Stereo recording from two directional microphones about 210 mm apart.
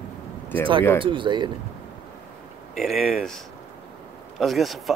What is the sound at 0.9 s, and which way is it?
Speech, 25° right (ahead or behind).